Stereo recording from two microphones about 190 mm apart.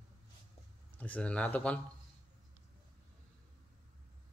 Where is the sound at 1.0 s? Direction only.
5° left (ahead or behind).